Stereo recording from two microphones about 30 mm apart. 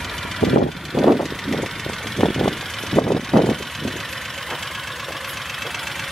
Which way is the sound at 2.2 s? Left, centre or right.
Centre.